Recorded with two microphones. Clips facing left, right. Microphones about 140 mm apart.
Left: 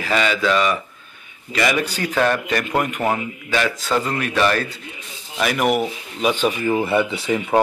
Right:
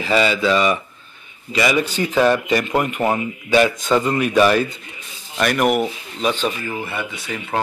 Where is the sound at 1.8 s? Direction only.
10° right (ahead or behind).